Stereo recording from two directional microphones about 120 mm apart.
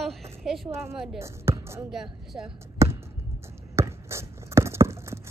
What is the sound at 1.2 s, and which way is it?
Speech, 25° right (ahead or behind).